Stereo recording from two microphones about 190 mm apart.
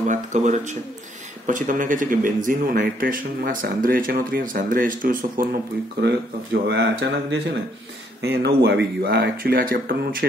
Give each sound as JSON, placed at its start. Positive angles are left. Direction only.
{"t": 0.1, "sound": "a man's voice", "side_deg": -40}